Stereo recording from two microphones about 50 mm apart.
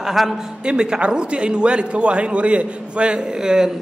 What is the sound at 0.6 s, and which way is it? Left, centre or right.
A man's voice, centre.